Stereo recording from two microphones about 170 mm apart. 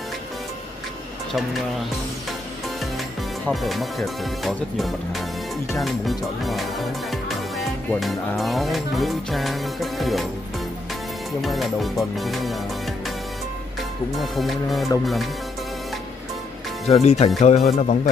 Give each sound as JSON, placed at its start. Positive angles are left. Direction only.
{"t": 3.4, "sound": "speech", "side_deg": 0}
{"t": 11.4, "sound": "speech", "side_deg": 0}
{"t": 14.1, "sound": "speech", "side_deg": 0}
{"t": 16.8, "sound": "speech", "side_deg": 40}